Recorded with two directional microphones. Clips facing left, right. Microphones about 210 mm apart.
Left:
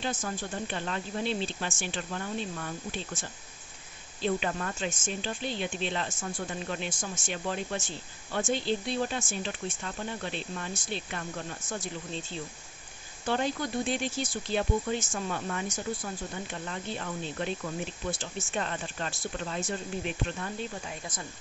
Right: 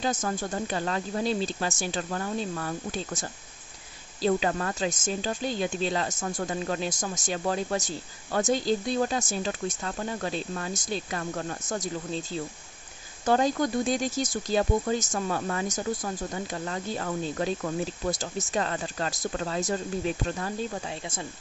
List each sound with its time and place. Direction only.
0.0 s speech: 45° right (ahead or behind)
4.3 s speech: 55° right (ahead or behind)
4.7 s speech: 40° right (ahead or behind)
20.8 s speech: 30° right (ahead or behind)